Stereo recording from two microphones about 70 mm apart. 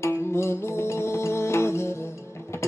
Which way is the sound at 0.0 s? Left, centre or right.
Left.